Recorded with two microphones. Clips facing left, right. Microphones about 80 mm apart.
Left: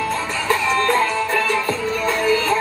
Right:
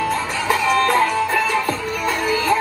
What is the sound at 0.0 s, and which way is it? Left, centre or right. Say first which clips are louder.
Music: right 1 dB; centre.